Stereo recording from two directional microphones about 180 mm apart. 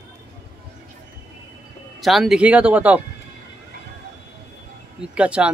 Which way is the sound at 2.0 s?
Centre (ahead or behind).